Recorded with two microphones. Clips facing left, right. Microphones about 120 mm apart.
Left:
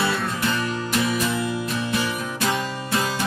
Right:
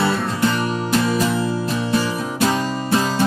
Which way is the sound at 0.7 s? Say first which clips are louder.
Right 4 dB; 30° right (ahead or behind).